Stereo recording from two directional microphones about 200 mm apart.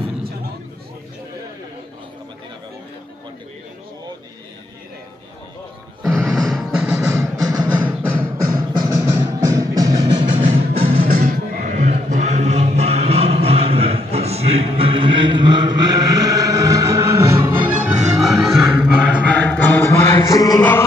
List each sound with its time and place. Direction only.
6.3 s music: centre (ahead or behind)
7.0 s music: 15° right (ahead or behind)
11.1 s music: 45° right (ahead or behind); by 19.2 s 5° right (ahead or behind)
19.2 s music: 10° left (ahead or behind)